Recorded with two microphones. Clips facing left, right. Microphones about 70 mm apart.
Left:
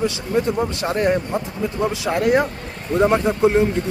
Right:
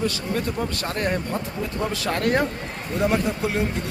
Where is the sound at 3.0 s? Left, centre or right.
Left.